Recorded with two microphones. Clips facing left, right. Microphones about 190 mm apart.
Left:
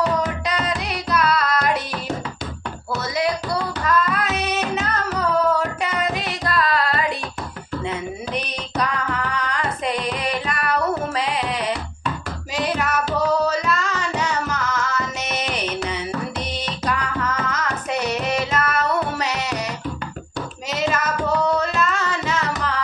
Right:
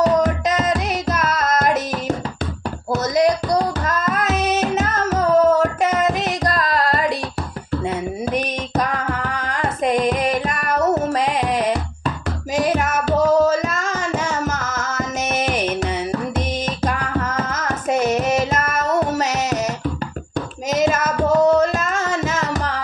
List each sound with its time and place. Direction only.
0.0 s music: 45° right (ahead or behind)
2.9 s a sound: 45° right (ahead or behind)
3.5 s music: 45° right (ahead or behind)
20.7 s music: 45° right (ahead or behind)